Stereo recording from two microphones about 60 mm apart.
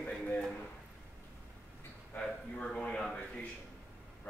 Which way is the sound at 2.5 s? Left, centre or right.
Centre.